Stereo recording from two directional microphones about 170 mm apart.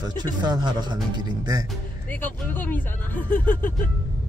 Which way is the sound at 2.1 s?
10° left (ahead or behind).